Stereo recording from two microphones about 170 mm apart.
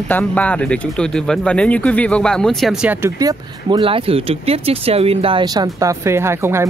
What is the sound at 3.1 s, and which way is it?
Speech, 25° right (ahead or behind).